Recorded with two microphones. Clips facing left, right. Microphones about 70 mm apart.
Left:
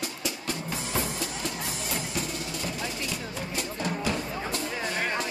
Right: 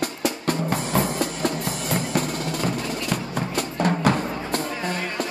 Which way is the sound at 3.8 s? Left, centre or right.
Right.